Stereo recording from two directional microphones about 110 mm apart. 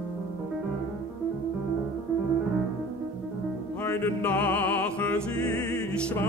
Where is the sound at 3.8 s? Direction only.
20° left (ahead or behind).